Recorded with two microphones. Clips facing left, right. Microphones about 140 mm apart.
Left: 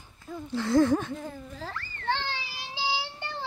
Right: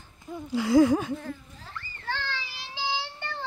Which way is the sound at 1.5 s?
90° left.